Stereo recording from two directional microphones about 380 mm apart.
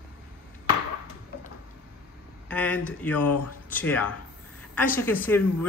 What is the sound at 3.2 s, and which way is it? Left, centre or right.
Speech, left.